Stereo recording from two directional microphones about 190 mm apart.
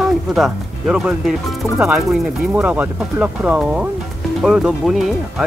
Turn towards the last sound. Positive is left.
turn(degrees=0)  # may be behind; listen again after turning